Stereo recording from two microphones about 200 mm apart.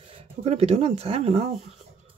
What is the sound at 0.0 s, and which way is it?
Speech, 30° right (ahead or behind).